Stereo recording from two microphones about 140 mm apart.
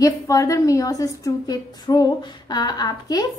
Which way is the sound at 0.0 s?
25° left (ahead or behind).